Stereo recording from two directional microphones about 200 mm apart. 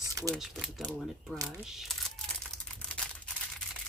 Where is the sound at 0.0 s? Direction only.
15° right (ahead or behind).